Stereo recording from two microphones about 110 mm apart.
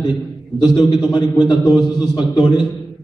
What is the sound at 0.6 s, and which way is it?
A man's voice, 40° left (ahead or behind).